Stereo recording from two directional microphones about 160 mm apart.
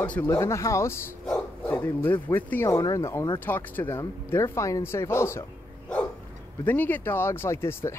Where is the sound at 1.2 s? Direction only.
5° left (ahead or behind).